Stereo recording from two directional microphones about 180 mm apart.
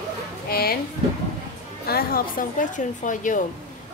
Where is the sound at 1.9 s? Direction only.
55° left (ahead or behind).